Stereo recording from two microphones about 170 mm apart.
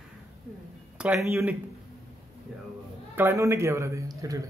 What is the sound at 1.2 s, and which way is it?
Speech, 15° right (ahead or behind).